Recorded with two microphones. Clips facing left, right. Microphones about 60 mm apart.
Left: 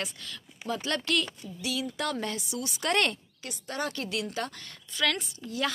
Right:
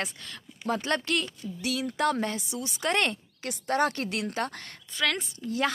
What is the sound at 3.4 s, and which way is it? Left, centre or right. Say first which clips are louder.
A woman's voice: right 8 dB; right.